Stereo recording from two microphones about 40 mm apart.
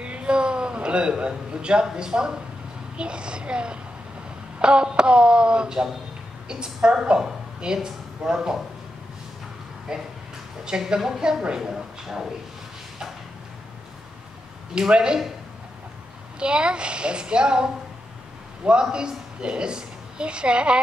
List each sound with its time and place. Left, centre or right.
0.0 s speech: right
9.9 s speech: centre
14.8 s speech: right
16.3 s speech: right
18.7 s a woman's voice: right